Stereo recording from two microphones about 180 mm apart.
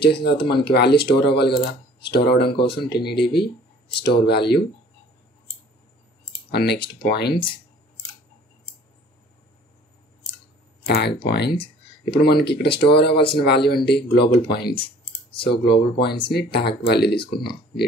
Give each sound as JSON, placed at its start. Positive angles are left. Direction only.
{"t": 0.0, "sound": "speech", "side_deg": 65}
{"t": 6.5, "sound": "speech", "side_deg": 65}
{"t": 10.9, "sound": "speech", "side_deg": 65}
{"t": 15.6, "sound": "speech", "side_deg": 65}